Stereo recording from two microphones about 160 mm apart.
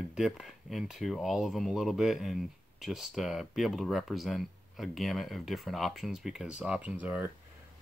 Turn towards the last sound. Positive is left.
turn(degrees=-10)  # may be behind; listen again after turning